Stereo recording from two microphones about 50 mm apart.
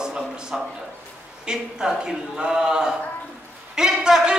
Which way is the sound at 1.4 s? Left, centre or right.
Centre.